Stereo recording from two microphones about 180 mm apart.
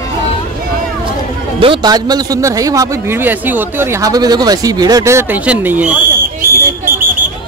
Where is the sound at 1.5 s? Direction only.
30° right (ahead or behind); by 6.0 s 10° right (ahead or behind).